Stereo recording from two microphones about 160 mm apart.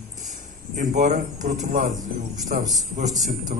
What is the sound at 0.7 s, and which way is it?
A man's voice, 50° right (ahead or behind).